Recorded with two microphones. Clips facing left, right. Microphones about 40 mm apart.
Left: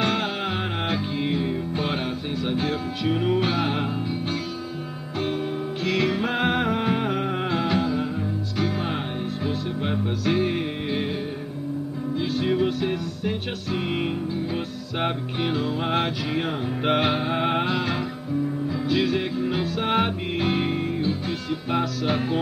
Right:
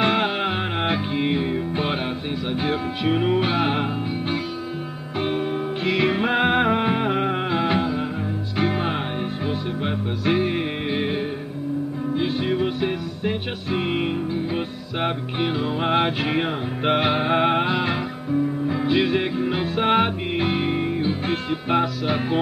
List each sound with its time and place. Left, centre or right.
0.0 s music: right
12.2 s music: right
12.4 s music: centre
15.4 s music: centre
17.2 s music: right
17.5 s music: centre
18.7 s music: right
20.0 s music: centre; by 21.8 s right
22.0 s music: centre